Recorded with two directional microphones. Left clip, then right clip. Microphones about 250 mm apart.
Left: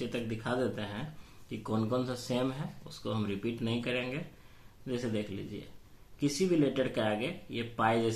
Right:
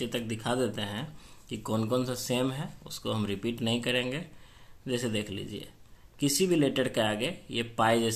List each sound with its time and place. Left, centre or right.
0.0 s speech: right